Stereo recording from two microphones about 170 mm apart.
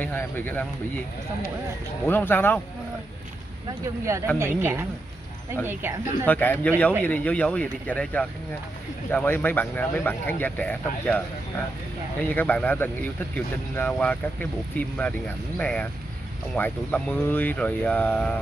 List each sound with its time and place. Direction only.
0.0 s speech: 10° left (ahead or behind)
2.0 s speech: 10° left (ahead or behind)
3.8 s speech: 15° right (ahead or behind)
6.2 s speech: 10° left (ahead or behind)